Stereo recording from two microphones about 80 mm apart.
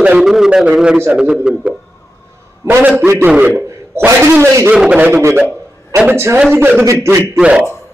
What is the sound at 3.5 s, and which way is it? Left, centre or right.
A man's voice, right.